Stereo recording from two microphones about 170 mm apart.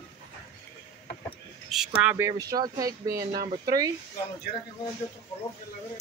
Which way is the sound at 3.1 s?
60° right (ahead or behind).